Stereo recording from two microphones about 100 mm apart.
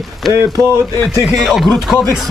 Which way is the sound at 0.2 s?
Centre (ahead or behind).